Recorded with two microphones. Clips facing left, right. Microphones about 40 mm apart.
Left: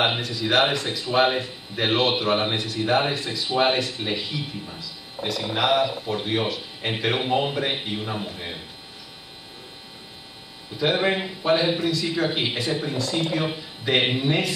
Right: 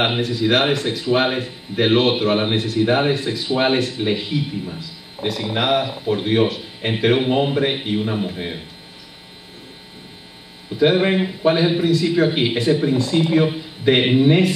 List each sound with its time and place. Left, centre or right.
0.0 s speech: centre
10.9 s speech: centre